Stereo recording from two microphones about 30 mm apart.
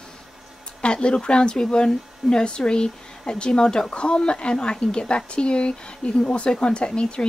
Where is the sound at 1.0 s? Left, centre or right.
Left.